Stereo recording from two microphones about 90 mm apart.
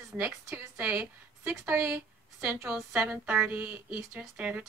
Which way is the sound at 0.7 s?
15° right (ahead or behind).